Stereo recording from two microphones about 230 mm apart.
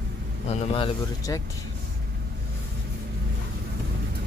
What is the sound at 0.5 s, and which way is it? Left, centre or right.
Speech, centre.